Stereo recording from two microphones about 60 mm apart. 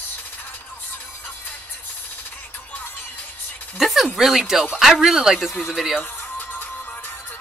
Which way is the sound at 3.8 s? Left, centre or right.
Centre.